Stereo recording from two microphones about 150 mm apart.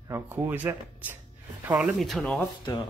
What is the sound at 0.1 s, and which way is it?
Speech, 15° right (ahead or behind).